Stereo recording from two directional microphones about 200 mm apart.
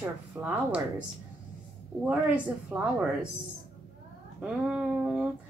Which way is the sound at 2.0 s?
5° right (ahead or behind).